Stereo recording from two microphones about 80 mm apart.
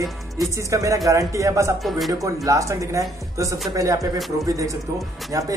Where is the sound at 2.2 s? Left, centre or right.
Right.